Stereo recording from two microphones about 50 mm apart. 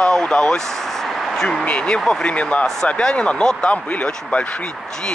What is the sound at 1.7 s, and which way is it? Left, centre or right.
Speech, left.